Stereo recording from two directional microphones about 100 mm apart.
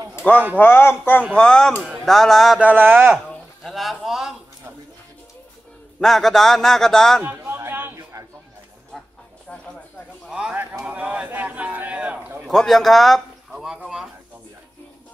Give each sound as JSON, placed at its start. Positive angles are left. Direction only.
{"t": 0.6, "sound": "speech", "side_deg": 20}
{"t": 1.3, "sound": "a man's voice", "side_deg": 10}
{"t": 2.6, "sound": "speech", "side_deg": -20}
{"t": 3.6, "sound": "a man's voice", "side_deg": 0}
{"t": 5.9, "sound": "a man's voice", "side_deg": 0}
{"t": 7.2, "sound": "a sound", "side_deg": -20}
{"t": 10.5, "sound": "a sound", "side_deg": -20}
{"t": 12.4, "sound": "a man's voice", "side_deg": 0}